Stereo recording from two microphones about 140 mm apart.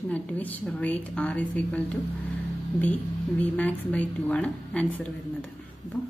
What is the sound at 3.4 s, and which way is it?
A woman's voice, 10° left (ahead or behind).